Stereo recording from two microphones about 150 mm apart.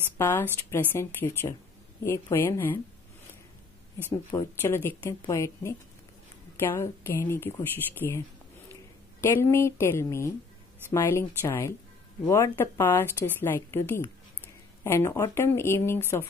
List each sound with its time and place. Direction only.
0.2 s speech: 15° left (ahead or behind)
4.6 s a woman's voice: 15° left (ahead or behind)
9.2 s speech: 15° left (ahead or behind)